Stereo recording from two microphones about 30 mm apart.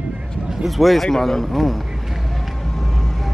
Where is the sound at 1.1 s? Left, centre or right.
Centre.